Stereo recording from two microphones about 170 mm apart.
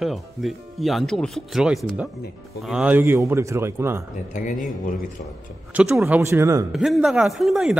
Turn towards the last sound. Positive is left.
turn(degrees=-5)  # may be behind; listen again after turning